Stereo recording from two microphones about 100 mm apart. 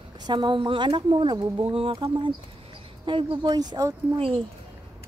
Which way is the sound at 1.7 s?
60° right (ahead or behind).